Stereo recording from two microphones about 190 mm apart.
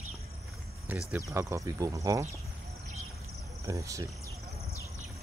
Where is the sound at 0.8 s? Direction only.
10° right (ahead or behind).